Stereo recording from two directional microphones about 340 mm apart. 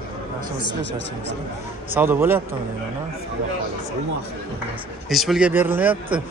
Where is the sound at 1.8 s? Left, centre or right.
Centre.